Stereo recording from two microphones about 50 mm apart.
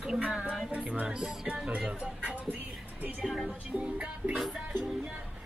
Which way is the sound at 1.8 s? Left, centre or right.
Right.